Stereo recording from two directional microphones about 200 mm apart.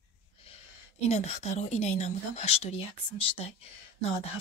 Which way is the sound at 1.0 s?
35° left (ahead or behind).